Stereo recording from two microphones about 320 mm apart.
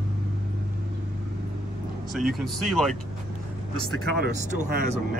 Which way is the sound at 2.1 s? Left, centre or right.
Centre.